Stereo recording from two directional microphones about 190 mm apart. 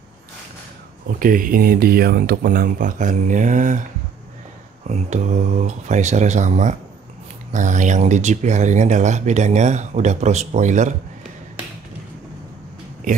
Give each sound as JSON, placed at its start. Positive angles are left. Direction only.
{"t": 1.0, "sound": "speech", "side_deg": -45}
{"t": 4.8, "sound": "speech", "side_deg": -35}